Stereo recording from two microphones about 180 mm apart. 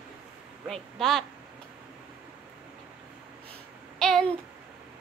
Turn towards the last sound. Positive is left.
turn(degrees=5)  # may be behind; listen again after turning